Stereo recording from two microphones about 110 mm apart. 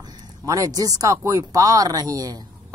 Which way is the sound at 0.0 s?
35° right (ahead or behind).